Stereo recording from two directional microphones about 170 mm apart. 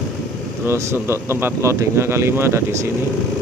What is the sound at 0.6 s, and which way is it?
Speech, 15° right (ahead or behind).